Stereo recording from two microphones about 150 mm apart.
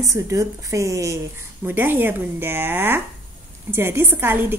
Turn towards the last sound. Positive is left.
turn(degrees=-15)  # may be behind; listen again after turning